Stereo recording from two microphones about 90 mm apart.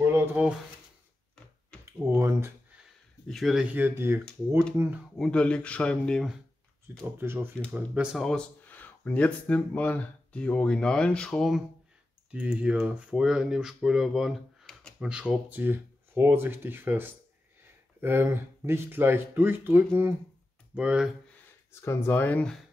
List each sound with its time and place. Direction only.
0.0 s a sound: 25° right (ahead or behind)
1.9 s speech: 30° right (ahead or behind)
3.3 s speech: centre (ahead or behind)
3.6 s speech: 20° right (ahead or behind)
5.1 s speech: 5° left (ahead or behind)
7.2 s speech: 25° right (ahead or behind)
7.7 s speech: 15° right (ahead or behind)
8.2 s speech: 5° left (ahead or behind)
8.6 s speech: 20° left (ahead or behind); by 11.6 s 5° left (ahead or behind)
12.3 s speech: 15° right (ahead or behind)
20.7 s speech: 15° right (ahead or behind)
21.8 s speech: 25° left (ahead or behind)